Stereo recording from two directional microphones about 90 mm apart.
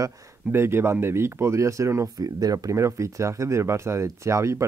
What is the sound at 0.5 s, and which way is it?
Speech, 30° right (ahead or behind).